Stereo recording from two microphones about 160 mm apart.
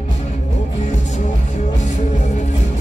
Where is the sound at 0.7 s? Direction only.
50° left (ahead or behind).